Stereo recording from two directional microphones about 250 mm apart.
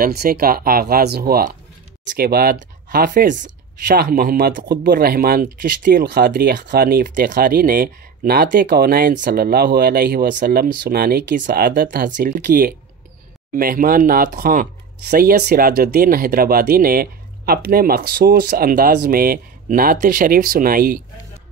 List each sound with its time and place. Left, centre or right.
0.0 s speech: right